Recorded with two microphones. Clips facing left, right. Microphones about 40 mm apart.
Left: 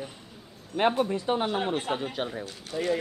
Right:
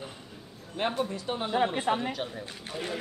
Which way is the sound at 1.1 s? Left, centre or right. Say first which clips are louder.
Left 4 dB; left.